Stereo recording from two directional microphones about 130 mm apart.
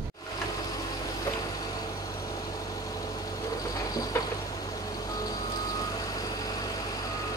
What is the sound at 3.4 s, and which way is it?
Train, 25° left (ahead or behind).